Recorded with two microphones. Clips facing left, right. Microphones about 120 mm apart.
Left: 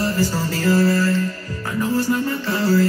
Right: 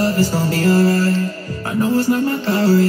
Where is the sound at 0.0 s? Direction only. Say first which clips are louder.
Right 4 dB; 40° right (ahead or behind).